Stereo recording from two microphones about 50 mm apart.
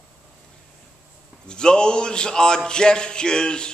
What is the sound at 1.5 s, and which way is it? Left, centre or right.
A man's voice, centre.